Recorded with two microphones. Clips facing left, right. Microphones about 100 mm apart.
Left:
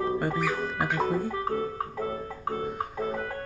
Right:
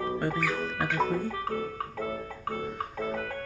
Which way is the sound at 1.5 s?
30° left (ahead or behind).